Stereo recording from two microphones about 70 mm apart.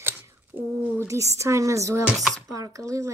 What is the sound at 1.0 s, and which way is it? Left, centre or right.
Speech, right.